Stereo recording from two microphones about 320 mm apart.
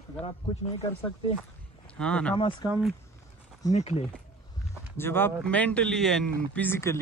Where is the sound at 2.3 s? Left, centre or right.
Centre.